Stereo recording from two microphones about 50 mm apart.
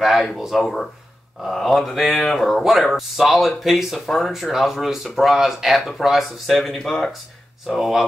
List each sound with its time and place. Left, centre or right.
0.4 s speech: centre